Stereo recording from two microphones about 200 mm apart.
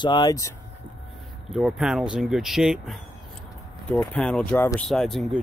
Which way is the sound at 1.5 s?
Centre (ahead or behind).